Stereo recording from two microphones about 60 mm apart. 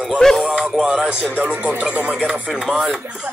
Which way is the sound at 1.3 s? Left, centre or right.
Centre.